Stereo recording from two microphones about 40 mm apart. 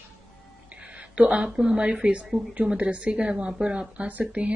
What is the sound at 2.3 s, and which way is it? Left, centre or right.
Speech, centre.